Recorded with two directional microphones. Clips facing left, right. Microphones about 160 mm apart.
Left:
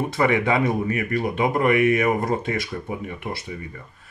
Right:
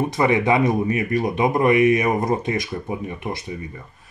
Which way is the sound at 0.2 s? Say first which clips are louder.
Right 2 dB; 20° right (ahead or behind).